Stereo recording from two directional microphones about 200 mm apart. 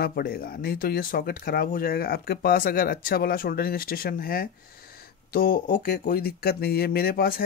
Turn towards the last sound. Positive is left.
turn(degrees=50)  # may be behind; listen again after turning